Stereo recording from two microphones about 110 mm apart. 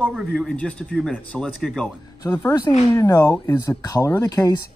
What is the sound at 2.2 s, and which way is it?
Speech, 15° left (ahead or behind).